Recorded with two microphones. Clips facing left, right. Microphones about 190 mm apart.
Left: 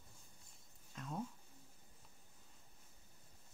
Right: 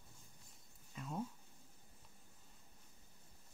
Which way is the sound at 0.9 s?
5° right (ahead or behind).